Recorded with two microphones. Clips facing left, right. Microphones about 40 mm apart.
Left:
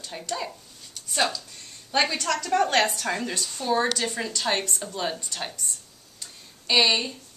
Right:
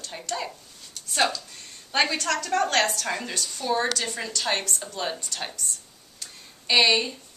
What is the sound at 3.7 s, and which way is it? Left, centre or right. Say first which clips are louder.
A woman's voice: left 2 dB; centre.